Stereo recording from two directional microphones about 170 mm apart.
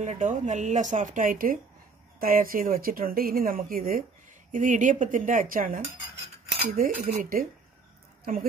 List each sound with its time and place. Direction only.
0.0 s speech: 45° right (ahead or behind)
6.8 s speech: 60° right (ahead or behind)